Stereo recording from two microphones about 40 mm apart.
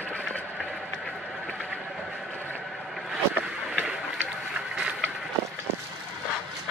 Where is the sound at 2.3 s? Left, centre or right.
Left.